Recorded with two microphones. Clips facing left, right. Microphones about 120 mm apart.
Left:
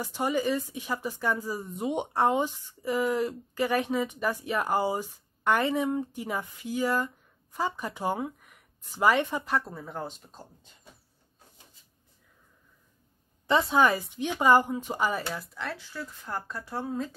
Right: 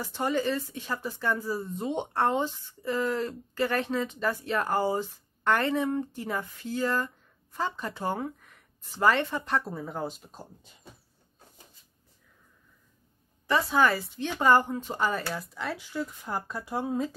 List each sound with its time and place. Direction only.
0.0 s speech: 10° left (ahead or behind)
9.5 s speech: centre (ahead or behind)
13.5 s speech: 20° left (ahead or behind); by 17.1 s 15° right (ahead or behind)